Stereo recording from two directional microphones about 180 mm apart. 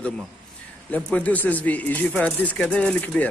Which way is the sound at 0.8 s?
10° left (ahead or behind).